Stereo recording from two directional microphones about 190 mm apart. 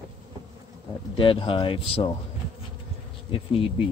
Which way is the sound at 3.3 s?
30° left (ahead or behind).